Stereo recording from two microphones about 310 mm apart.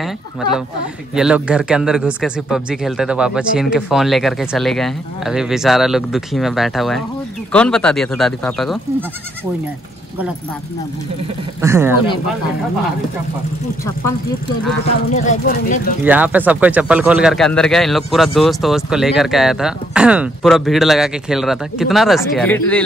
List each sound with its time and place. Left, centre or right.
0.0 s speech: centre
11.6 s speech: centre
15.1 s speech: left
16.0 s speech: centre